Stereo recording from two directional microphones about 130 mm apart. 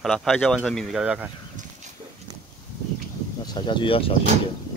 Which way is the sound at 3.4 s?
35° left (ahead or behind).